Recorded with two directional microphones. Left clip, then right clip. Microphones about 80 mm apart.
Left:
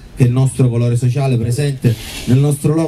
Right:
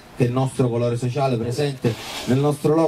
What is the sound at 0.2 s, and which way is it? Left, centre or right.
Speech, left.